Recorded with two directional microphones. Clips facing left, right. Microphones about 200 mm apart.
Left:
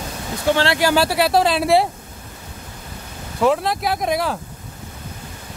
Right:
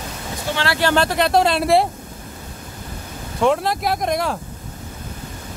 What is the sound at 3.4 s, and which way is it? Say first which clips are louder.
Speech: even; centre (ahead or behind).